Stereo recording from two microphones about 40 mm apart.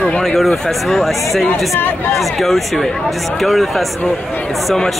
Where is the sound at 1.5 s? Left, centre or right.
Left.